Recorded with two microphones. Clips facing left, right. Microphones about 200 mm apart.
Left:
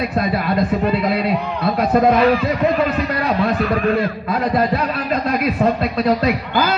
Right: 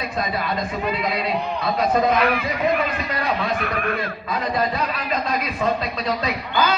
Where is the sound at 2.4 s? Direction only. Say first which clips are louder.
Left 5 dB; 65° left (ahead or behind).